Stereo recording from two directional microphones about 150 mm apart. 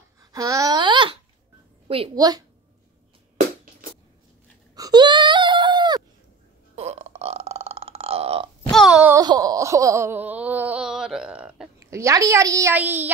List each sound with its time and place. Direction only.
0.2 s babbling: 25° right (ahead or behind)
2.1 s a woman's voice: 25° right (ahead or behind)
4.7 s a sound: 25° right (ahead or behind)
6.7 s burping: 45° right (ahead or behind)
8.6 s a sound: centre (ahead or behind)
9.2 s wail: 25° right (ahead or behind); by 11.7 s 5° right (ahead or behind)
11.8 s a woman's voice: 20° right (ahead or behind)